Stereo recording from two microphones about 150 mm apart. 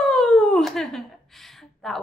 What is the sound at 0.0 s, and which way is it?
A woman's voice, centre (ahead or behind).